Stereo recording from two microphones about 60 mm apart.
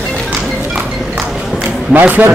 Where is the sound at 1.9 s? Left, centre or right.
Right.